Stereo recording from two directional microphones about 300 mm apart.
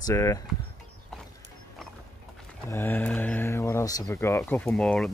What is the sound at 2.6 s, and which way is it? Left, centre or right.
Speech, centre.